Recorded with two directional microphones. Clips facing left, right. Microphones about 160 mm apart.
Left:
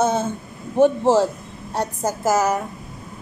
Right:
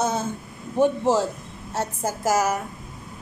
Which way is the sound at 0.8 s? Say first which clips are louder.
Left 4 dB; 90° left.